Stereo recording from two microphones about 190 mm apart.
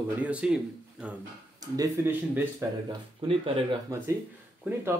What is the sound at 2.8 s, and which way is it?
Speech, 30° right (ahead or behind).